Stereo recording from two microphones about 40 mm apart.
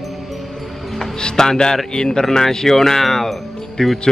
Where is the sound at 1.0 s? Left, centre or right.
Centre.